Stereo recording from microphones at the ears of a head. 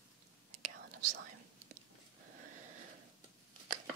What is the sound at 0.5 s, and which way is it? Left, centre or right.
Whispering, right.